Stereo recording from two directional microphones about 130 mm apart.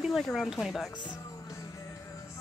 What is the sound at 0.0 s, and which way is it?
Speech, centre (ahead or behind).